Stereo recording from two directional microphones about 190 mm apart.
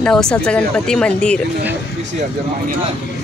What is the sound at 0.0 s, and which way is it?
Speech, 5° left (ahead or behind).